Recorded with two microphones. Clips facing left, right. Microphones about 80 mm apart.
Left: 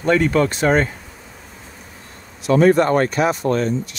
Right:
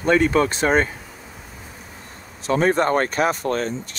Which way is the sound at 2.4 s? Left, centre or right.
Right.